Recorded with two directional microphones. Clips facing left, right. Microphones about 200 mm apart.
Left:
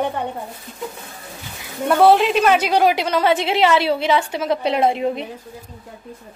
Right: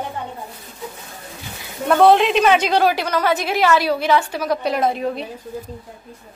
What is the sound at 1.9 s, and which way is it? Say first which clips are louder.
Speech: even; 5° left (ahead or behind).